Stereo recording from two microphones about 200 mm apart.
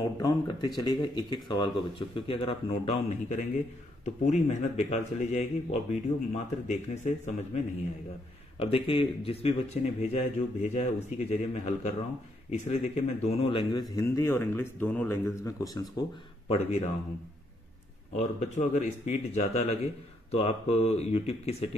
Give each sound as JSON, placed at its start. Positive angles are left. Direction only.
{"t": 0.2, "sound": "a man's voice", "side_deg": 20}
{"t": 16.4, "sound": "speech", "side_deg": 30}
{"t": 18.1, "sound": "speech", "side_deg": 35}